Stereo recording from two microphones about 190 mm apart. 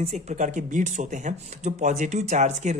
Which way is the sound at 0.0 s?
35° right (ahead or behind).